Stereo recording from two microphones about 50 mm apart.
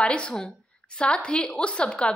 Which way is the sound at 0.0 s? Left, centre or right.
Left.